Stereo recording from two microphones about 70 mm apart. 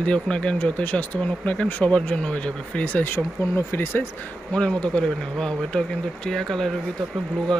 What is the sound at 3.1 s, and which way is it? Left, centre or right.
Speech, left.